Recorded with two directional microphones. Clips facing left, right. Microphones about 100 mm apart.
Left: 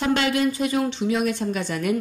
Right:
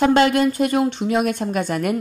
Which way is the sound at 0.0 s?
50° right (ahead or behind).